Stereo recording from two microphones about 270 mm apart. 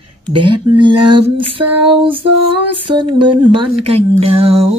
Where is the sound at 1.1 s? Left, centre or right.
Centre.